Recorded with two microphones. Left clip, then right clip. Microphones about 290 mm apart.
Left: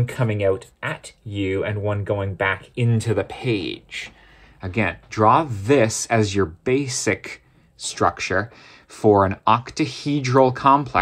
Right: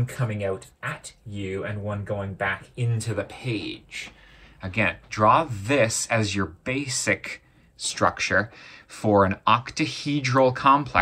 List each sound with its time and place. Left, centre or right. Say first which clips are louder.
0.0 s speech: left 8 dB; left
4.6 s speech: left 1 dB; left